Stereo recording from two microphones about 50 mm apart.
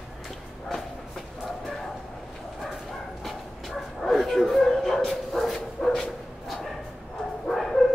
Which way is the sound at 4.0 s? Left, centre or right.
Centre.